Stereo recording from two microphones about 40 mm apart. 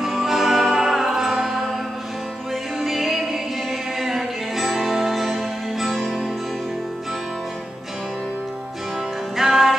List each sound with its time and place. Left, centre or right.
0.1 s music: centre
2.8 s music: centre
9.4 s music: centre